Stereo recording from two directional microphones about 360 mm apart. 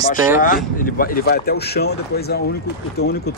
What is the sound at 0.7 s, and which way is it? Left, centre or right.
Speech, left.